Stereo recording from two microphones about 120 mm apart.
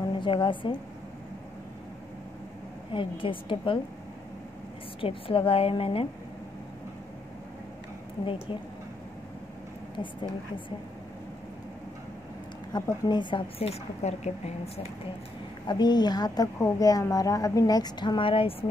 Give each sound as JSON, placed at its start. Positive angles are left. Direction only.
{"t": 0.0, "sound": "a woman's voice", "side_deg": 45}
{"t": 2.9, "sound": "a woman's voice", "side_deg": 45}
{"t": 5.0, "sound": "a woman's voice", "side_deg": 50}
{"t": 12.7, "sound": "a woman's voice", "side_deg": 35}
{"t": 13.6, "sound": "a woman's voice", "side_deg": 60}
{"t": 15.6, "sound": "a woman's voice", "side_deg": 35}